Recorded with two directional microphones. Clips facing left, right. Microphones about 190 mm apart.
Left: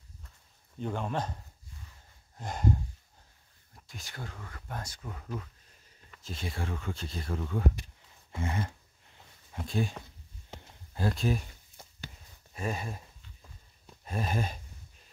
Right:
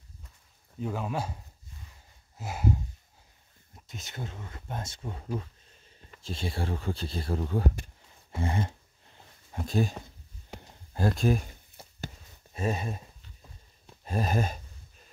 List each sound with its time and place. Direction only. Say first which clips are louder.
0.7 s speech: right 1 dB; 5° right (ahead or behind)
3.7 s speech: right 3 dB; 20° right (ahead or behind)
8.4 s a sound: right 3 dB; 30° right (ahead or behind)
9.5 s speech: right 4 dB; 40° right (ahead or behind)
12.5 s a sound: right 4 dB; 25° right (ahead or behind)
14.0 s gasp: right 4 dB; 40° right (ahead or behind)